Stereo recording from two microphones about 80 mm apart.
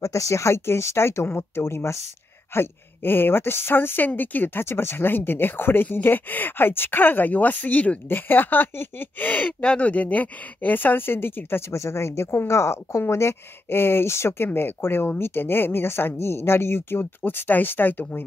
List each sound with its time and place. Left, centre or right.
0.0 s a woman's voice: left